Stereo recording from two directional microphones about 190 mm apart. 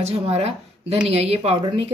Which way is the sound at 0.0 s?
35° right (ahead or behind).